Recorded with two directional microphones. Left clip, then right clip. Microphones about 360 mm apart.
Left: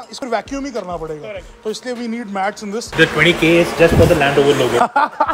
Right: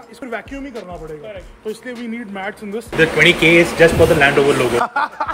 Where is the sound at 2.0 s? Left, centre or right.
Left.